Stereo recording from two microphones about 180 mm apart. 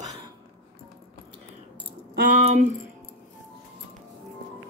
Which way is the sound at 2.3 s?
40° right (ahead or behind).